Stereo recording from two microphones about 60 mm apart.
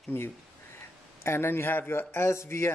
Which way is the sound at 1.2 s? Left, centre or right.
Left.